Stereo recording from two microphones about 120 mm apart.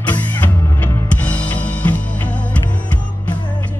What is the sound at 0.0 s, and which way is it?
Music, 15° left (ahead or behind).